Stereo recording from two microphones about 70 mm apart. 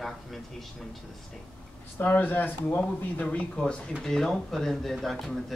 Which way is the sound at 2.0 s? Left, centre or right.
Left.